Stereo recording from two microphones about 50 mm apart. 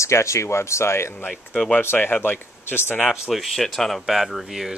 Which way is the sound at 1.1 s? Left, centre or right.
Left.